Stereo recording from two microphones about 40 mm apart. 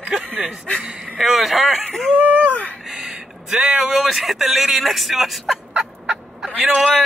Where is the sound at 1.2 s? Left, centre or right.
Centre.